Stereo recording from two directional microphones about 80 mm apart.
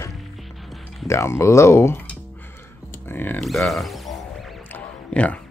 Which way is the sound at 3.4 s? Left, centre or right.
Centre.